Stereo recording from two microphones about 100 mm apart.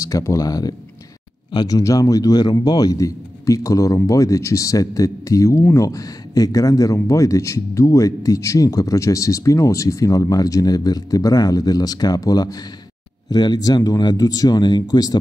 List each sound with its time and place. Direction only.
0.1 s a man's voice: 30° left (ahead or behind); by 1.8 s 45° left (ahead or behind)
1.8 s a man's voice: 35° left (ahead or behind)